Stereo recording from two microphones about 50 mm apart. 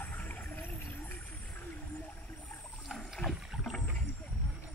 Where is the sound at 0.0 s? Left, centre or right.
Left.